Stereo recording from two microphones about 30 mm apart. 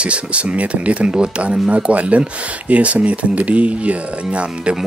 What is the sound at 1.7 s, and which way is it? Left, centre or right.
Speech, right.